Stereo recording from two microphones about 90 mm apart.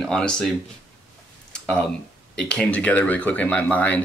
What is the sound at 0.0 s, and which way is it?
Speech, 10° left (ahead or behind).